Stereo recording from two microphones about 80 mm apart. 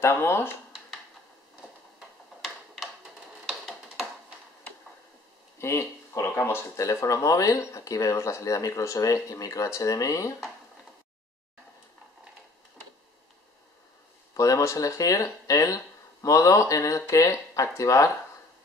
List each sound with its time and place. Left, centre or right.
0.0 s speech: left
2.4 s a sound: centre
5.6 s speech: left
14.3 s speech: left